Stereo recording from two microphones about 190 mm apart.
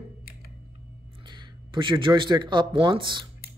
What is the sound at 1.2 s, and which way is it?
Speech, 25° right (ahead or behind).